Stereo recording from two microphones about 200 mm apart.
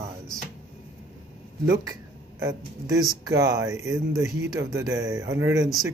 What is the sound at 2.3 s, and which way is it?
Speech, 15° right (ahead or behind).